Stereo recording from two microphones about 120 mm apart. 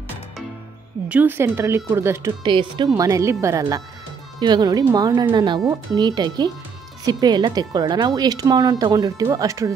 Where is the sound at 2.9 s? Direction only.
30° right (ahead or behind).